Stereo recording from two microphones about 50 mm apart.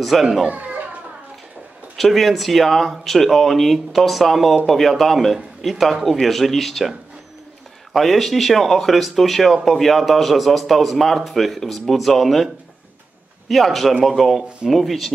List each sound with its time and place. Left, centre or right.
0.0 s speech: centre
0.5 s children playing: right
2.0 s speech: centre
13.5 s speech: centre